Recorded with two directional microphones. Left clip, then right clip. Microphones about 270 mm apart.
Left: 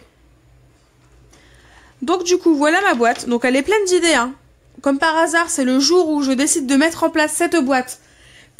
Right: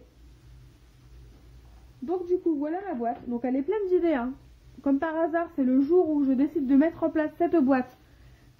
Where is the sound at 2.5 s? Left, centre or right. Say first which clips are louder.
Left 16 dB; left.